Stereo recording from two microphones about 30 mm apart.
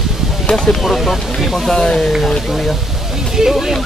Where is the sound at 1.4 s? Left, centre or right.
Centre.